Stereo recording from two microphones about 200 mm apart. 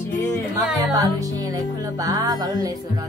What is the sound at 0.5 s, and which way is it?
Music, 15° right (ahead or behind).